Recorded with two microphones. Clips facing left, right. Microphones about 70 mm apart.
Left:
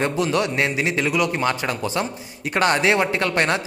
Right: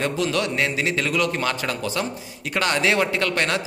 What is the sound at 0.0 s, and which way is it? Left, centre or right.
Speech, left.